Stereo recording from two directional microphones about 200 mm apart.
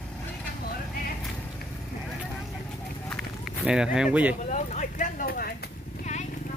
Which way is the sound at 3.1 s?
Centre (ahead or behind).